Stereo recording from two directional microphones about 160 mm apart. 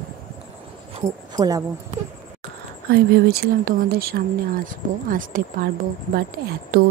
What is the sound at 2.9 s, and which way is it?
Speech, 75° right (ahead or behind).